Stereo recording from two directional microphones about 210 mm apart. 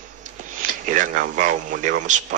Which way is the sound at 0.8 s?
40° right (ahead or behind).